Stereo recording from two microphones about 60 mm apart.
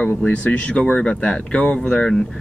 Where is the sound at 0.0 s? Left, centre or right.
Left.